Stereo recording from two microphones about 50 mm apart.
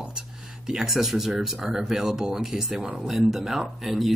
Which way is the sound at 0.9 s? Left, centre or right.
Centre.